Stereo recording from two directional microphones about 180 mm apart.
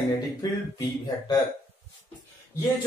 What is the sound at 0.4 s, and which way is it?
Speech, 20° left (ahead or behind).